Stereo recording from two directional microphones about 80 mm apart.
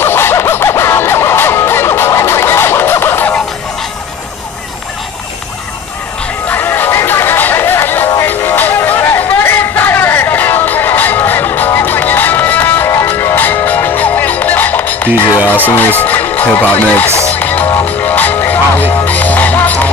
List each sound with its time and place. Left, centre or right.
0.0 s music: left
6.5 s music: left